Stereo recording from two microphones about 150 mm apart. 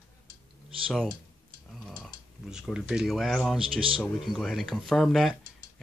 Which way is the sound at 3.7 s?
35° right (ahead or behind).